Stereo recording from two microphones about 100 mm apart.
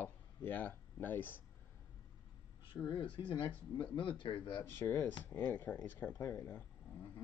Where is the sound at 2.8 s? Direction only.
55° left (ahead or behind).